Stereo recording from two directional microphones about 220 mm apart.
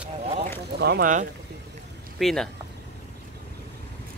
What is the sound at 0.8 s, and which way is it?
Speech, 40° right (ahead or behind).